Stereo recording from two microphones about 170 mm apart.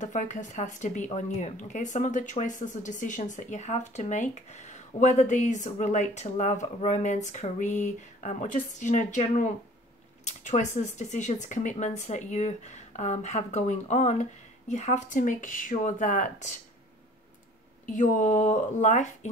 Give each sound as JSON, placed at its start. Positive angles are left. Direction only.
{"t": 0.0, "sound": "speech", "side_deg": 45}
{"t": 17.8, "sound": "speech", "side_deg": 50}